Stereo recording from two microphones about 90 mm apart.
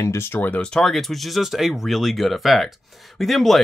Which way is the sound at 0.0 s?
30° left (ahead or behind).